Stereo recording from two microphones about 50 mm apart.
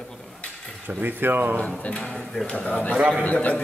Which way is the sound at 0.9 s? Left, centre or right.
Right.